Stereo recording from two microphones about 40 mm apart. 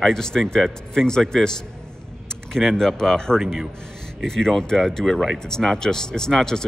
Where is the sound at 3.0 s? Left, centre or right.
Centre.